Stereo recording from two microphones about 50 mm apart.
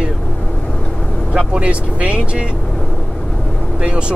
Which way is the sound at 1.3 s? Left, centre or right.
Centre.